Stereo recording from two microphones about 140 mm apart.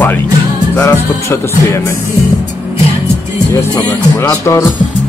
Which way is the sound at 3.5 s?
10° left (ahead or behind).